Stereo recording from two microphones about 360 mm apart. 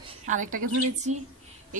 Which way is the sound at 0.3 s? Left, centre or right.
Right.